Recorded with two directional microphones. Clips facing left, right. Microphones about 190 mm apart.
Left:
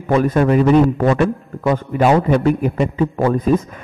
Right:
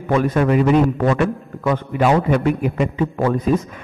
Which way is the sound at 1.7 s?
40° left (ahead or behind).